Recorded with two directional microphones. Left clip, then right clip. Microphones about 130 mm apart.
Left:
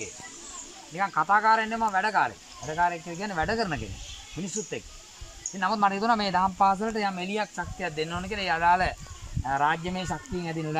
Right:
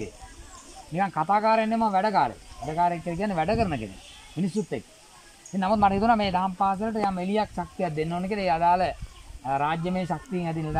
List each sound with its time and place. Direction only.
0.9 s speech: 35° right (ahead or behind)
5.6 s speech: 30° right (ahead or behind); by 7.2 s 10° right (ahead or behind)
7.8 s speech: 40° right (ahead or behind)
9.4 s speech: 25° right (ahead or behind)
10.3 s speech: 10° right (ahead or behind)